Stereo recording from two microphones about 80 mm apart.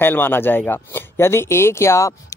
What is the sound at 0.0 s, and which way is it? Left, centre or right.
Speech, left.